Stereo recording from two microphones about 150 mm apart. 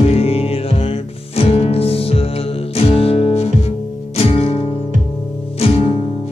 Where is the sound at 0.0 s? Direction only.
40° left (ahead or behind).